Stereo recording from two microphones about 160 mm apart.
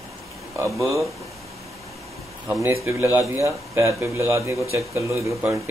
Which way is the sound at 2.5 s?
15° right (ahead or behind).